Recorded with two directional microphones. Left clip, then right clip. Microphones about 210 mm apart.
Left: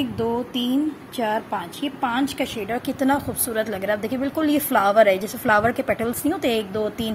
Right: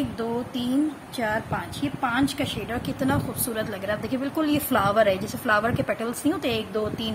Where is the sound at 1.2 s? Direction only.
15° left (ahead or behind).